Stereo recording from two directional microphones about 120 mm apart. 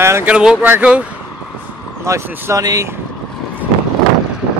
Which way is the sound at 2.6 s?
30° right (ahead or behind).